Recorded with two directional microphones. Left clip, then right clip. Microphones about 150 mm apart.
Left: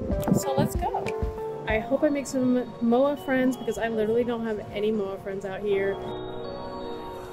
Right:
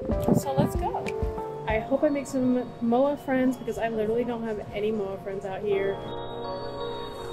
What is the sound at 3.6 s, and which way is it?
Speech, 50° left (ahead or behind).